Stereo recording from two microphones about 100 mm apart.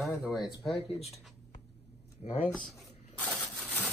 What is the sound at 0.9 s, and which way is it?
Speech, 90° left.